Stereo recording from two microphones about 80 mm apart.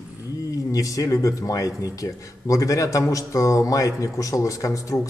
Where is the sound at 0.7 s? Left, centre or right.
Left.